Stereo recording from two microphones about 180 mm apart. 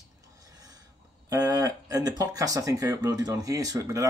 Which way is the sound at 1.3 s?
20° right (ahead or behind).